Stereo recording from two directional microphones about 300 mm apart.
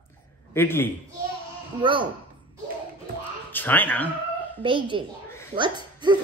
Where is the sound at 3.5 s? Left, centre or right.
Centre.